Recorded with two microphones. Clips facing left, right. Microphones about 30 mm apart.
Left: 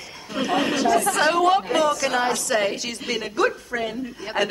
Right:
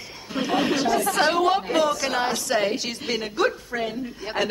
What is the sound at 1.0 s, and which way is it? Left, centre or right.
A woman's voice, centre.